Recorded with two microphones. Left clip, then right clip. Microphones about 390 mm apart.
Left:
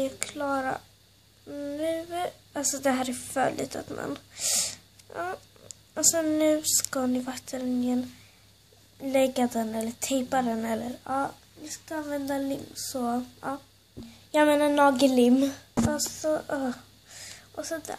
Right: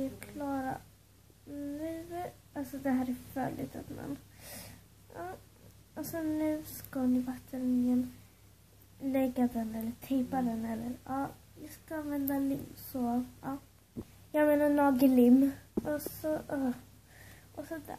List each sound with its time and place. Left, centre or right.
0.2 s speech: centre
1.8 s a woman's voice: centre
5.1 s a sound: centre
5.9 s speech: centre
9.0 s speech: centre